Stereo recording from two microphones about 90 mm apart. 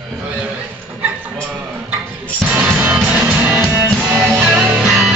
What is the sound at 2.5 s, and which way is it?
Music, 15° right (ahead or behind).